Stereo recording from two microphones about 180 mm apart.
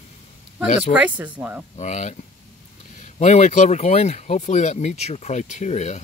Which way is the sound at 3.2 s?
40° left (ahead or behind).